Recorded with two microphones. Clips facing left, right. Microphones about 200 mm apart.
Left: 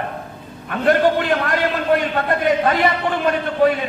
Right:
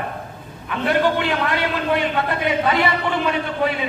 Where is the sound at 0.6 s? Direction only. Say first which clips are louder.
Left 3 dB; 45° left (ahead or behind).